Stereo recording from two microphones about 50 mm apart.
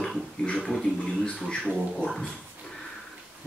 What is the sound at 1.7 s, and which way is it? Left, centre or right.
Speech, centre.